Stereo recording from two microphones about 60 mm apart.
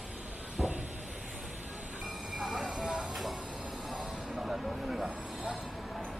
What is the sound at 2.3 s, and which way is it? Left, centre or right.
Train, centre.